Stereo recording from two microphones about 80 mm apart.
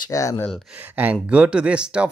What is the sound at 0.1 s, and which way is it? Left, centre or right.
Speech, left.